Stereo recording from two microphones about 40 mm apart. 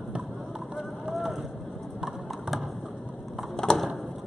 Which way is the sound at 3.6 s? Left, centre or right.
Centre.